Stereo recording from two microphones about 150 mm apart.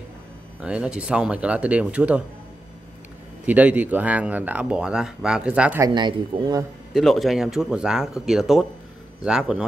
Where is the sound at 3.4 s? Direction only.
10° right (ahead or behind).